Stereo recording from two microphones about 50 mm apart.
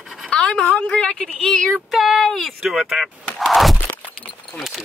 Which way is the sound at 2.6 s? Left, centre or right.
Centre.